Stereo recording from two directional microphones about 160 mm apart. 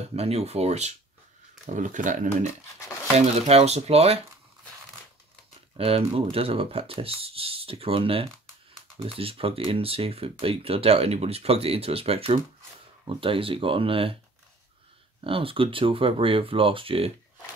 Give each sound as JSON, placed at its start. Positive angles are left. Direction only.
{"t": 0.1, "sound": "speech", "side_deg": -40}
{"t": 3.2, "sound": "speech", "side_deg": -40}
{"t": 5.8, "sound": "speech", "side_deg": -35}
{"t": 15.2, "sound": "speech", "side_deg": -35}